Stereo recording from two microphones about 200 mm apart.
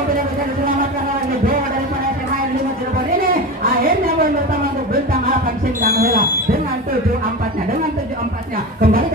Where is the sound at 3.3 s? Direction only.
45° right (ahead or behind).